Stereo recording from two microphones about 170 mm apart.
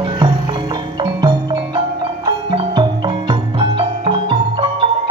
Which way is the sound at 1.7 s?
25° right (ahead or behind).